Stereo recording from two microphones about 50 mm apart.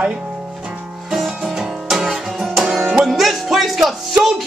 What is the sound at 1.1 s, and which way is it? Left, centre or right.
Music, centre.